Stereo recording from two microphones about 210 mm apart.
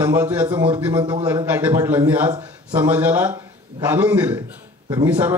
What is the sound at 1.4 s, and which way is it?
A man's voice, 10° right (ahead or behind).